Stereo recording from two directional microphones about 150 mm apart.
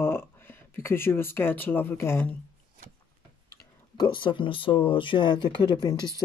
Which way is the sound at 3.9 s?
35° left (ahead or behind).